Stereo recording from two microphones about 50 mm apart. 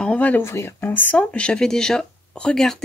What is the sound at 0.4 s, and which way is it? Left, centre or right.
Speech, left.